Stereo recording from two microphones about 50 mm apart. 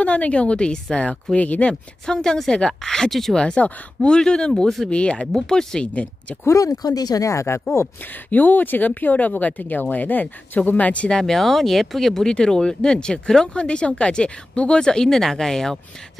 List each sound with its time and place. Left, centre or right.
0.0 s a woman's voice: left; by 3.3 s centre
3.3 s a woman's voice: centre
5.3 s speech: centre
6.4 s speech: left
7.2 s speech: left
8.3 s speech: left
11.1 s speech: centre